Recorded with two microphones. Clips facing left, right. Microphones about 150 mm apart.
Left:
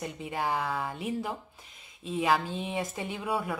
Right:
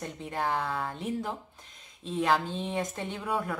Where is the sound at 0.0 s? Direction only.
5° left (ahead or behind).